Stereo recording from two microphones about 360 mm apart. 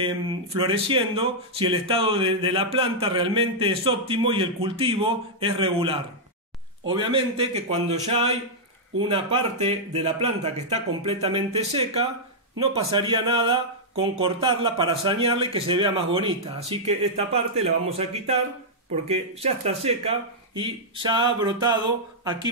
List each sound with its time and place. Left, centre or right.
0.6 s speech: centre